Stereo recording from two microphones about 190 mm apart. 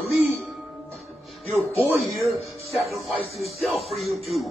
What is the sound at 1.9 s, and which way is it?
Speech, centre (ahead or behind).